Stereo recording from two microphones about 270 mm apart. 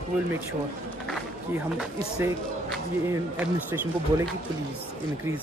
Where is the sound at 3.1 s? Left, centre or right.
Centre.